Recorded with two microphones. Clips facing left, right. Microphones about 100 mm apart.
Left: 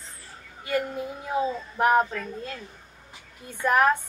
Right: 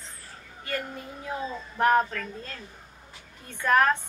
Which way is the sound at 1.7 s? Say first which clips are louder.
Left 1 dB; 10° left (ahead or behind).